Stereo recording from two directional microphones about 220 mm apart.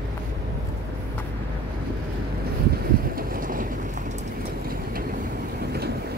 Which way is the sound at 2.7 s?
45° right (ahead or behind).